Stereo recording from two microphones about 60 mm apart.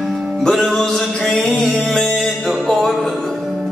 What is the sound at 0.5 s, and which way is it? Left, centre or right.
Music, centre.